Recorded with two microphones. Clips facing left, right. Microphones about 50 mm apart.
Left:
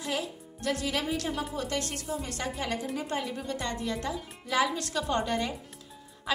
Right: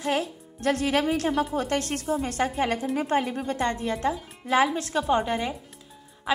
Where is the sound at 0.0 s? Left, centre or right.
Right.